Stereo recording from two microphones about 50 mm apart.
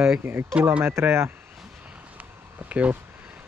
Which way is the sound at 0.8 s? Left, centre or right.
Right.